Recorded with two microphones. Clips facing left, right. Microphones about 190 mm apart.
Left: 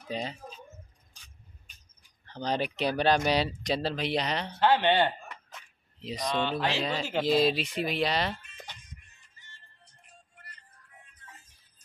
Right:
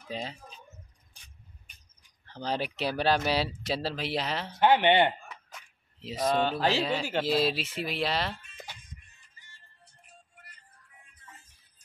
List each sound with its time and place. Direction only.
0.1 s speech: centre (ahead or behind)
2.2 s speech: 5° right (ahead or behind)
4.6 s speech: 15° right (ahead or behind)
5.3 s a sound: 5° right (ahead or behind)
6.2 s mantra: 45° right (ahead or behind)
6.8 s speech: 5° right (ahead or behind)
9.8 s music: 5° right (ahead or behind)